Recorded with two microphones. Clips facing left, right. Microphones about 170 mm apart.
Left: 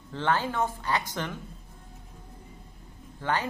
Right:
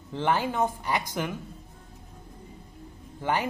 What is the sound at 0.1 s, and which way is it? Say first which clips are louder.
Speech: right 1 dB; 15° right (ahead or behind).